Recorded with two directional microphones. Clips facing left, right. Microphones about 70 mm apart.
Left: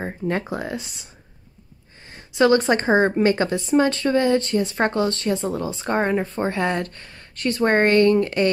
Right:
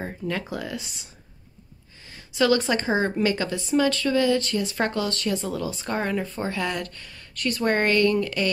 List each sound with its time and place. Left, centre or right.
0.0 s speech: left
2.0 s speech: left